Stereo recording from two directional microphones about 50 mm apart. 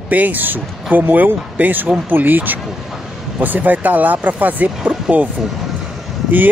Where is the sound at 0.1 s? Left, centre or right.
Right.